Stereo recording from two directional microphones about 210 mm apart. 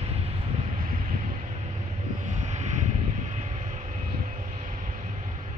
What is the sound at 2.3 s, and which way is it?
Vehicle, 35° right (ahead or behind).